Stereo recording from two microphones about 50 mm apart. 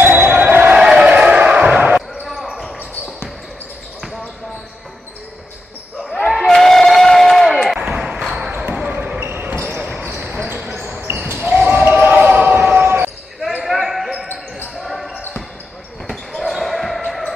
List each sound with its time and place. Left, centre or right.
0.0 s basketball bounce: right
0.7 s a sound: centre
1.8 s basketball bounce: right
2.4 s basketball bounce: centre
6.3 s a sound: centre
8.8 s basketball bounce: right
9.2 s basketball bounce: right
11.0 s basketball bounce: right
11.3 s basketball bounce: right
12.4 s basketball bounce: right
13.7 s basketball bounce: centre
16.1 s basketball bounce: centre